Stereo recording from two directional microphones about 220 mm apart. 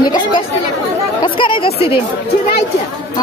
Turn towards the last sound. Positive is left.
turn(degrees=25)  # may be behind; listen again after turning